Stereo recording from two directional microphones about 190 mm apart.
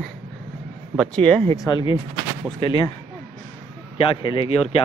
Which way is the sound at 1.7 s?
25° left (ahead or behind).